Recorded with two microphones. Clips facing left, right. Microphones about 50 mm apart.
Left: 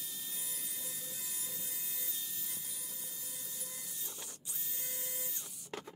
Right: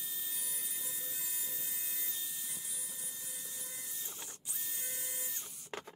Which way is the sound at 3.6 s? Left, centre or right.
Right.